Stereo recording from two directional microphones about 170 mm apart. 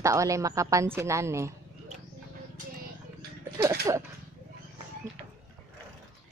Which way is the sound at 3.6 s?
20° right (ahead or behind).